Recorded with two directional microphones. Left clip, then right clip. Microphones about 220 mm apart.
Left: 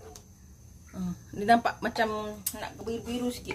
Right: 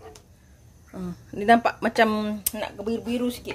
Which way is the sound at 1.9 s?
35° right (ahead or behind).